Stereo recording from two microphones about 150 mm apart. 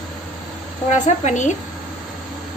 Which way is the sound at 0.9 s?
55° left (ahead or behind).